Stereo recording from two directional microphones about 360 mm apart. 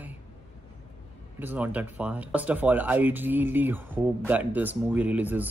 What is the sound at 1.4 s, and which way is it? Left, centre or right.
Speech, centre.